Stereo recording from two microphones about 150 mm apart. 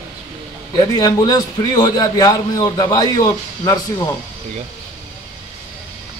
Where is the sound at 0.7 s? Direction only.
25° left (ahead or behind).